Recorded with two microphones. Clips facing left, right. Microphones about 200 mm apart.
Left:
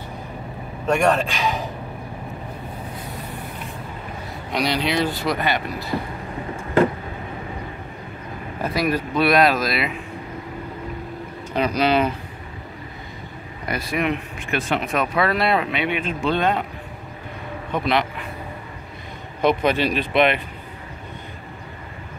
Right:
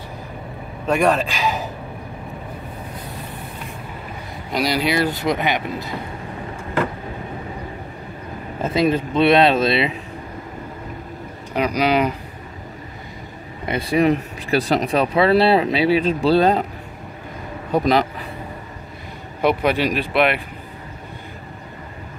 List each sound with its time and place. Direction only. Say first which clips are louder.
0.8 s a man's voice: right 1 dB; centre (ahead or behind)
4.5 s speech: right 2 dB; 5° right (ahead or behind)
5.1 s speech: right 2 dB; 20° right (ahead or behind)
8.5 s speech: right 4 dB; 25° right (ahead or behind)
11.5 s speech: right 1 dB; 10° right (ahead or behind)
13.7 s speech: right 6 dB; 30° right (ahead or behind)
17.6 s speech: right 5 dB; 40° right (ahead or behind)
19.4 s speech: right 1 dB; 10° right (ahead or behind)